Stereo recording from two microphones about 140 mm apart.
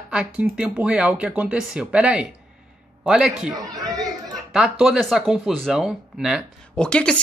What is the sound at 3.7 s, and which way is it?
Chatter, 25° right (ahead or behind).